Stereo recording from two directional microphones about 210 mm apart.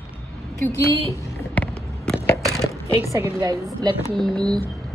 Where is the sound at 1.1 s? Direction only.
15° left (ahead or behind).